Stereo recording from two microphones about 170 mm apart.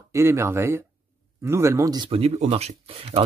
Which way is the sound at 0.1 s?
15° right (ahead or behind).